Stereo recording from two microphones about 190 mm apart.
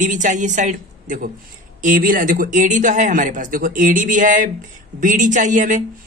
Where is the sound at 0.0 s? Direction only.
40° right (ahead or behind).